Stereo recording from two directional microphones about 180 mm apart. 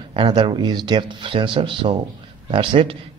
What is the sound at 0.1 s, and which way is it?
Speech, 25° right (ahead or behind).